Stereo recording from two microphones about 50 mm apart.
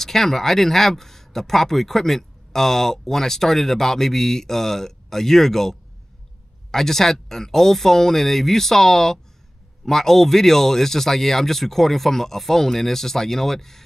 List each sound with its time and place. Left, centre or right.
0.0 s speech: centre